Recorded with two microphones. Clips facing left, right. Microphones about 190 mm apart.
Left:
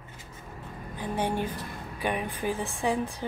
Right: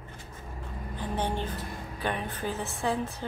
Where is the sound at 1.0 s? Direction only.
10° left (ahead or behind).